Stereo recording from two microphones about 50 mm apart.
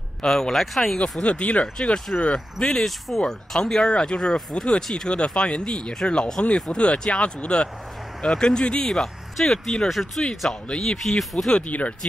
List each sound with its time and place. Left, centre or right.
0.2 s speech: centre
1.2 s speech: left
2.6 s speech: centre
10.7 s speech: left
11.0 s speech: centre
11.5 s speech: left